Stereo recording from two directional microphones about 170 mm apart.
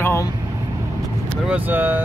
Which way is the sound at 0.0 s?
15° left (ahead or behind).